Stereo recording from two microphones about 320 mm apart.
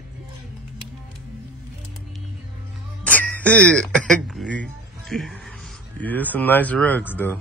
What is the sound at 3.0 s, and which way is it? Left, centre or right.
Speech, centre.